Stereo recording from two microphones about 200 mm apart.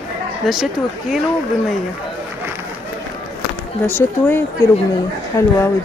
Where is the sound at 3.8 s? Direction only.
10° left (ahead or behind).